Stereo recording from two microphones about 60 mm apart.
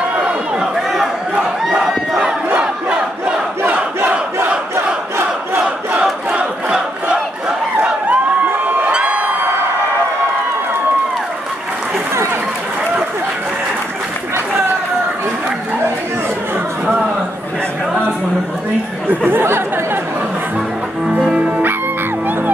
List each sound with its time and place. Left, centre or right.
1.7 s crowd: centre
3.6 s crowd: right
4.7 s crowd: right
5.9 s battle cry: centre
8.8 s crowd: right
19.0 s chatter: right
21.3 s music: right